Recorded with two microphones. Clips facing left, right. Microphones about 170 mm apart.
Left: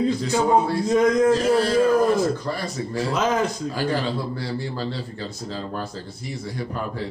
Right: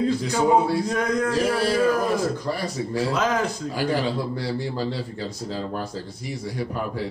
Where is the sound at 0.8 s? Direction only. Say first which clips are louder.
Left 6 dB; 20° left (ahead or behind).